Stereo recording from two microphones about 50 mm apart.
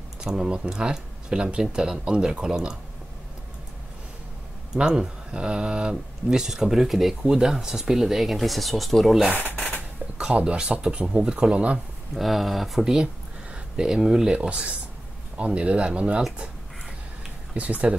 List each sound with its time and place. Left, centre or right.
0.2 s speech: centre
4.7 s speech: centre
10.1 s speech: centre
12.2 s speech: centre
12.9 s a sound: centre
14.3 s speech: right
17.6 s speech: right